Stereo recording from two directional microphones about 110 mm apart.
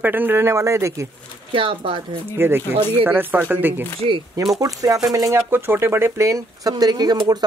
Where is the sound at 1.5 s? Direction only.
50° right (ahead or behind).